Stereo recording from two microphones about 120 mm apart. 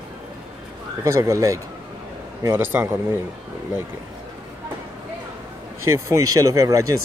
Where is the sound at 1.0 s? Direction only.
25° right (ahead or behind).